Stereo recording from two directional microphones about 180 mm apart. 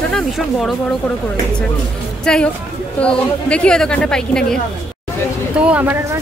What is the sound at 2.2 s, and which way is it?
Speech, 5° left (ahead or behind).